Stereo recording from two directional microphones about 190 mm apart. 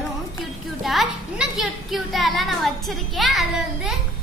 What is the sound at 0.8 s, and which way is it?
A child's voice, centre (ahead or behind).